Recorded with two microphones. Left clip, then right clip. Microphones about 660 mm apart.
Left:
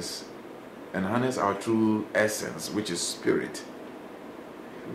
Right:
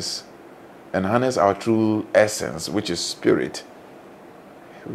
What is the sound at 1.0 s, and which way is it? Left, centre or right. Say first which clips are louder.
Speech: right 8 dB; right.